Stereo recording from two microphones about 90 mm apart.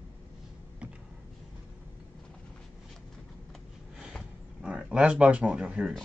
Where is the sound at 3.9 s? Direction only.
5° right (ahead or behind).